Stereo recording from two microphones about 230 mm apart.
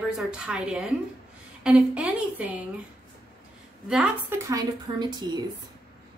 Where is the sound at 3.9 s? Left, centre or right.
Centre.